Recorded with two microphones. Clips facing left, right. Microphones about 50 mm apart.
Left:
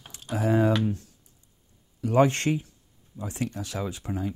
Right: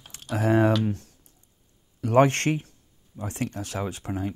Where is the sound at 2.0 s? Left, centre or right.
Right.